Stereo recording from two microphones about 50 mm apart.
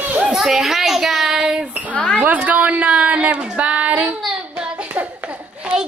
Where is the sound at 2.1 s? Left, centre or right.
Right.